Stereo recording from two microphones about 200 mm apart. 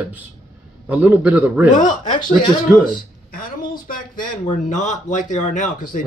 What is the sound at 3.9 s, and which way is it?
Speech, 40° left (ahead or behind).